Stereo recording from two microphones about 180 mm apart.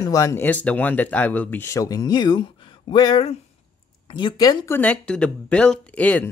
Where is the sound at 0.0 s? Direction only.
20° left (ahead or behind).